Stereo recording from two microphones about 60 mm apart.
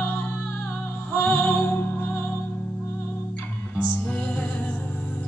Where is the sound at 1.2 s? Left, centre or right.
Left.